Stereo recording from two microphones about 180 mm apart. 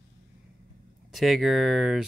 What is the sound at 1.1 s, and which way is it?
Speech, centre (ahead or behind).